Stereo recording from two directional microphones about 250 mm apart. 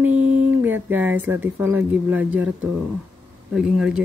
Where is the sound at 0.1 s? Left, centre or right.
Right.